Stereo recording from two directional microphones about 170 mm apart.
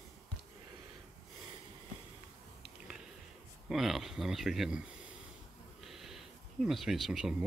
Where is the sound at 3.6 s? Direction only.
Centre (ahead or behind).